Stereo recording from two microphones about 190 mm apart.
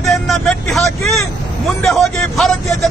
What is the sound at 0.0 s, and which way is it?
Vehicle, centre (ahead or behind).